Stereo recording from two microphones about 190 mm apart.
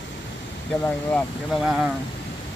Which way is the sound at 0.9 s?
10° left (ahead or behind).